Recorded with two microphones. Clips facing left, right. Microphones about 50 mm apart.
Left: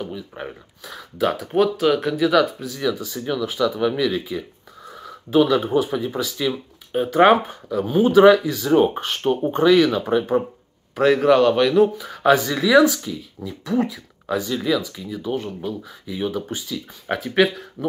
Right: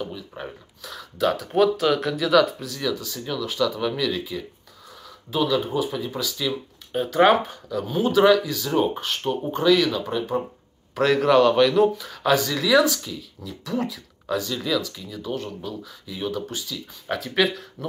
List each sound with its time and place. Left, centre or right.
0.0 s speech: centre
1.5 s speech: centre
2.9 s speech: left
11.0 s speech: centre
12.1 s speech: left